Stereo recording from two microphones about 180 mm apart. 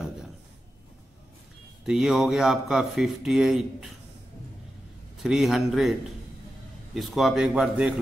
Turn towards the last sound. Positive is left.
turn(degrees=-5)  # may be behind; listen again after turning